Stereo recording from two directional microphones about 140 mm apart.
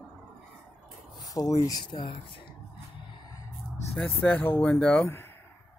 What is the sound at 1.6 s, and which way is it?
Speech, 30° left (ahead or behind).